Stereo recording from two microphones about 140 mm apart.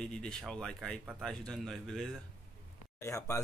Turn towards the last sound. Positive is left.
turn(degrees=20)  # may be behind; listen again after turning